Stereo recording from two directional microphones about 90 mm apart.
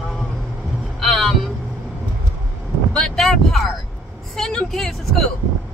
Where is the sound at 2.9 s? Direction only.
5° left (ahead or behind).